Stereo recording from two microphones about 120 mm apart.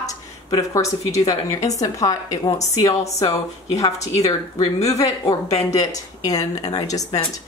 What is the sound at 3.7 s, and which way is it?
Speech, 60° left (ahead or behind).